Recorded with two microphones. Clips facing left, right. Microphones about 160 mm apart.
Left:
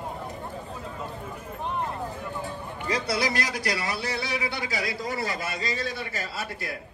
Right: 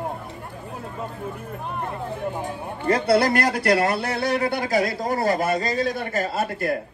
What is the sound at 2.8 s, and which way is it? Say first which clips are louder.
A man's voice: right 9 dB; 60° right (ahead or behind).